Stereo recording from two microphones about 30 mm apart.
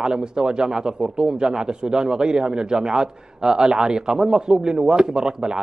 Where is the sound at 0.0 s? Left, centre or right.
Right.